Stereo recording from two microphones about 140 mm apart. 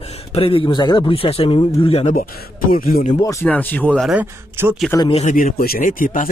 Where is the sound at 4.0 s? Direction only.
5° right (ahead or behind).